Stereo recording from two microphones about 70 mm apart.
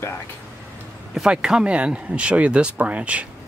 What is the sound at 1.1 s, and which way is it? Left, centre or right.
Speech, centre.